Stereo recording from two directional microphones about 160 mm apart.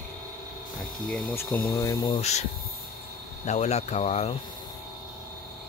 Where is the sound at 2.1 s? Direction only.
45° left (ahead or behind).